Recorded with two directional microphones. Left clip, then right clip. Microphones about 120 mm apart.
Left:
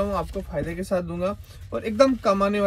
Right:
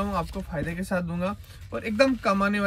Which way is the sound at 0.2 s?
30° right (ahead or behind).